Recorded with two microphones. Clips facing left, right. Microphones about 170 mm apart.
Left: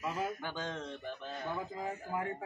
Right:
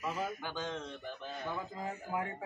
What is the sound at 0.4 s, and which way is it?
Speech, 20° right (ahead or behind).